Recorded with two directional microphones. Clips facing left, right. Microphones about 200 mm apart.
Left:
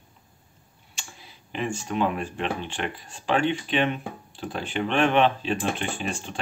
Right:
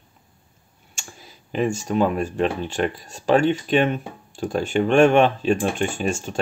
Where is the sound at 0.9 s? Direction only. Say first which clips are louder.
Right 3 dB; 40° right (ahead or behind).